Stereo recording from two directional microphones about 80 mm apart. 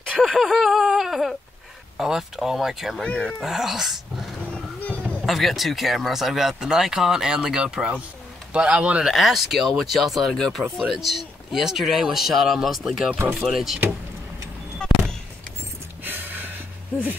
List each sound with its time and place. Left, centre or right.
0.1 s speech: centre
3.0 s speech: centre
3.3 s speech: centre
4.5 s a sound: centre
5.2 s speech: centre
9.0 s speech: centre
14.8 s a sound: centre
16.0 s gasp: right